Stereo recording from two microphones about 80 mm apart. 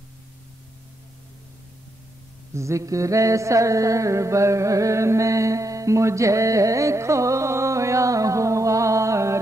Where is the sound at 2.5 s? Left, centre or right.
Right.